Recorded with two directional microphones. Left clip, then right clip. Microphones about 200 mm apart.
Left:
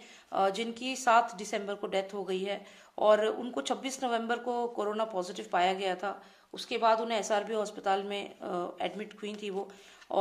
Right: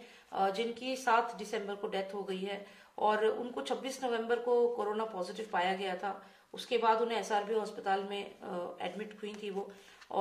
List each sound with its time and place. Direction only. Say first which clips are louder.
0.3 s a woman's voice: left 3 dB; 50° left (ahead or behind)